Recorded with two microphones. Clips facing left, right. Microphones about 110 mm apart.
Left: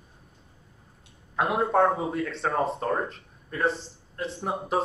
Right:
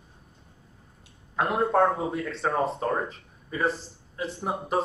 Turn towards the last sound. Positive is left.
turn(degrees=0)  # may be behind; listen again after turning